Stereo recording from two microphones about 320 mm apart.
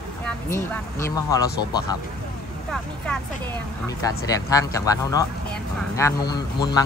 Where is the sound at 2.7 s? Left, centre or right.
Centre.